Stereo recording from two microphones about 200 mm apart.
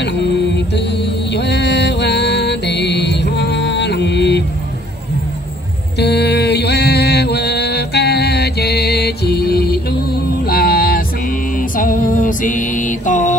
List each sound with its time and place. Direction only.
0.0 s music: 55° left (ahead or behind)
5.9 s mantra: 55° left (ahead or behind)
10.4 s music: 50° left (ahead or behind)